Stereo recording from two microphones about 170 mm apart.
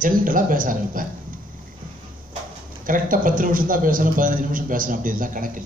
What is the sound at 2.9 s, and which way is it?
A man's voice, 55° right (ahead or behind).